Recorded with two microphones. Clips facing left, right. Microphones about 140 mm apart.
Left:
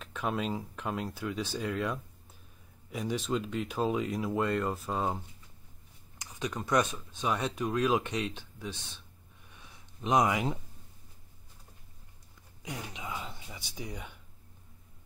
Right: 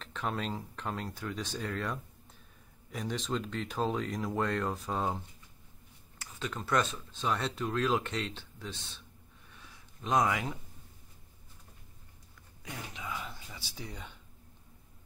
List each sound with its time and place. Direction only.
0.0 s speech: 10° left (ahead or behind)
6.1 s speech: 15° left (ahead or behind)
10.0 s speech: 20° left (ahead or behind)
12.6 s speech: 20° left (ahead or behind)